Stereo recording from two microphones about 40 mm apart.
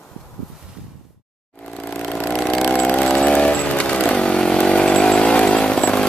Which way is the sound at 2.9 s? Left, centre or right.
Centre.